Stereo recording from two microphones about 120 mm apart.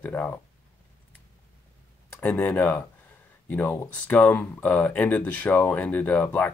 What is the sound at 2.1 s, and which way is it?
Speech, 15° left (ahead or behind).